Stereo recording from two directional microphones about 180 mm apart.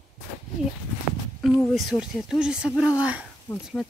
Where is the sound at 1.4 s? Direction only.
Centre (ahead or behind).